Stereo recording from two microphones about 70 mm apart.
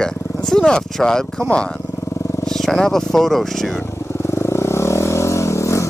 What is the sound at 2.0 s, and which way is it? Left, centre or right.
Vehicle, left.